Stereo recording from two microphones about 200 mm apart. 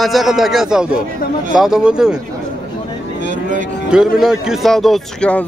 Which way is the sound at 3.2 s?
40° right (ahead or behind).